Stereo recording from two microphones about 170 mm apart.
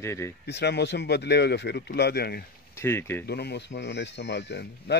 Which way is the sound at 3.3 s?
75° left (ahead or behind).